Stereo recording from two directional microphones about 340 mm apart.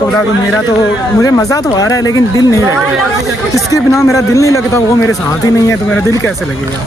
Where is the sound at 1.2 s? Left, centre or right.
Centre.